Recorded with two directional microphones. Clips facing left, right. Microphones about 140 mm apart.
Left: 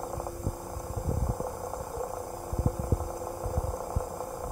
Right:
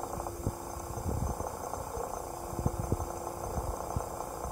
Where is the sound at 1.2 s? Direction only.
10° left (ahead or behind).